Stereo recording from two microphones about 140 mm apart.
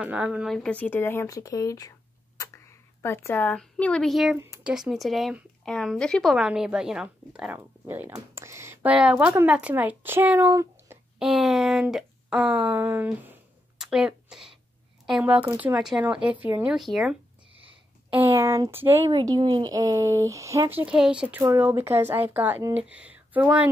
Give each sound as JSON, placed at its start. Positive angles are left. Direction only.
{"t": 0.0, "sound": "speech", "side_deg": -10}
{"t": 8.9, "sound": "speech", "side_deg": -5}
{"t": 11.1, "sound": "speech", "side_deg": -5}
{"t": 18.1, "sound": "speech", "side_deg": -15}
{"t": 19.1, "sound": "speech", "side_deg": -30}
{"t": 20.8, "sound": "speech", "side_deg": -5}
{"t": 21.4, "sound": "speech", "side_deg": -20}